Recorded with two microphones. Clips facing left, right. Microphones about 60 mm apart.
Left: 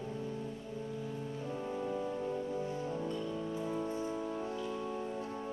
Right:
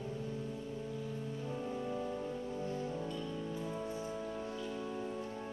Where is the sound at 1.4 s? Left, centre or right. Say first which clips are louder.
Left 2 dB; centre.